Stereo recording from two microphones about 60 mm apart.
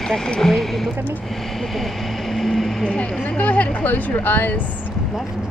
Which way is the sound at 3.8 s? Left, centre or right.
Left.